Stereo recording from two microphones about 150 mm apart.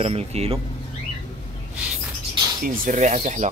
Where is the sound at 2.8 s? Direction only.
55° right (ahead or behind).